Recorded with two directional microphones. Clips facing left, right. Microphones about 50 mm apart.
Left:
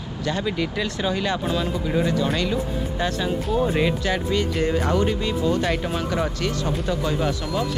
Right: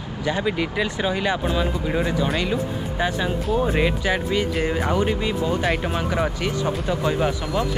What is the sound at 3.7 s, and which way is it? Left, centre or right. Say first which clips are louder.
Speech: right 1 dB; centre.